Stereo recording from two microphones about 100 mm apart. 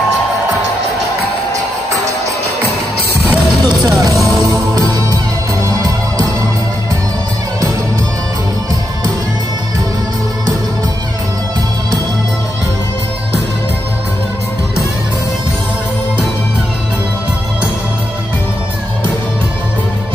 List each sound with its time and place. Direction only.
3.6 s music: 40° right (ahead or behind)